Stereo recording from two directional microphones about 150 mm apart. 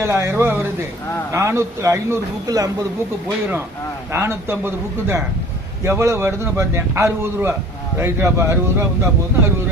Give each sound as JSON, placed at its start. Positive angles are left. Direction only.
{"t": 0.0, "sound": "a man's voice", "side_deg": -20}
{"t": 4.1, "sound": "a man's voice", "side_deg": -20}